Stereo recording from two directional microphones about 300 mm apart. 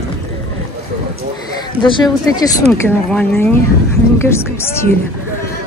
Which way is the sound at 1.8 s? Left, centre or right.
Centre.